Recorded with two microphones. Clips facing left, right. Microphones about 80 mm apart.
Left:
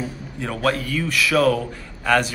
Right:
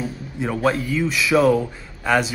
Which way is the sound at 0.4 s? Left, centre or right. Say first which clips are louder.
Right 2 dB; centre.